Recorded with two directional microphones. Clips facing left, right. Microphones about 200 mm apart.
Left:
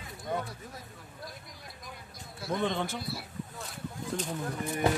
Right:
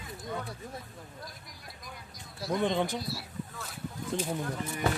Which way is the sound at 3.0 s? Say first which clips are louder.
Right 1 dB; 55° left (ahead or behind).